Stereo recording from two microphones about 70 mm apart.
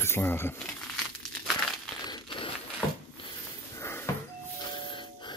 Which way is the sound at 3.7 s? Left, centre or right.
Left.